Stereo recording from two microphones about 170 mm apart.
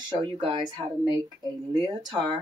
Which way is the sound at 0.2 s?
30° right (ahead or behind).